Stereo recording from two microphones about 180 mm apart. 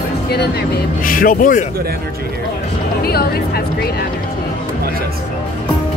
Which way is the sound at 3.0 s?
60° left (ahead or behind).